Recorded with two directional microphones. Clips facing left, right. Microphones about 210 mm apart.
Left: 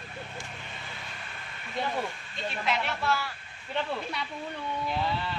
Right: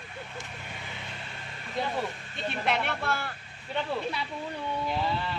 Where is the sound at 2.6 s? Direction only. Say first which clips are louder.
Right 1 dB; 55° right (ahead or behind).